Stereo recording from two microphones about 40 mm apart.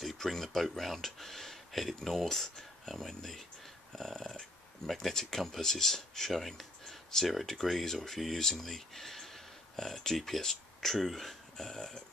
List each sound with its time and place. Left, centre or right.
0.0 s speech: centre